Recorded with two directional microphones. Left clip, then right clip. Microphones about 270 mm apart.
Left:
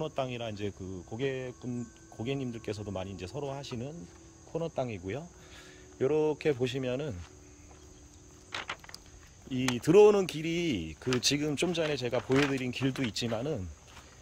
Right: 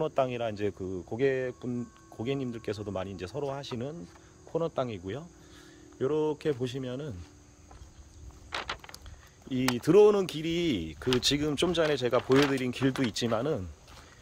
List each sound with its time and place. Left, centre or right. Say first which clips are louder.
0.0 s speech: right 6 dB; centre
8.5 s a sound: right 3 dB; right
9.5 s speech: right 1 dB; centre
12.2 s speech: right 3 dB; right
12.5 s speech: right 3 dB; centre